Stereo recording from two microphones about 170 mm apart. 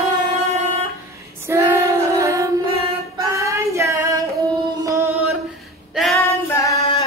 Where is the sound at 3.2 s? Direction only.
15° right (ahead or behind).